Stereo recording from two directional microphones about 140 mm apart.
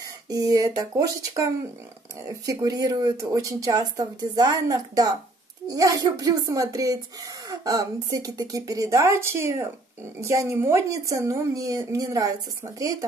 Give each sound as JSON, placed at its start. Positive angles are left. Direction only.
{"t": 0.3, "sound": "a woman's voice", "side_deg": -25}